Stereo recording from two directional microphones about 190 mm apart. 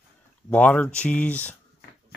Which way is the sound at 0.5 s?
10° left (ahead or behind).